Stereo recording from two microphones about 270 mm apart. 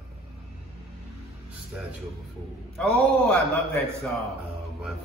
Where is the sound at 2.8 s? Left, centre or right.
Centre.